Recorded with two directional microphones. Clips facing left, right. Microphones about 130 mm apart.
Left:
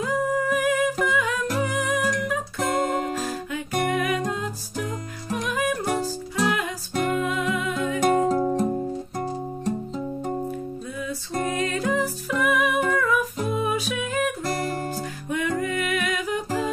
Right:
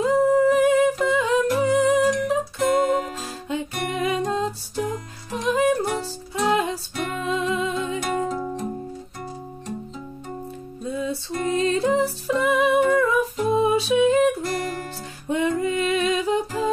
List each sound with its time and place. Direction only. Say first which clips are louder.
0.0 s humming: right 7 dB; 30° right (ahead or behind)
3.4 s music: right 1 dB; 25° right (ahead or behind)
8.1 s music: left 5 dB; 30° left (ahead or behind)
10.9 s music: right 4 dB; 25° right (ahead or behind)
14.4 s music: even; 35° left (ahead or behind)
15.2 s music: right 4 dB; 25° right (ahead or behind)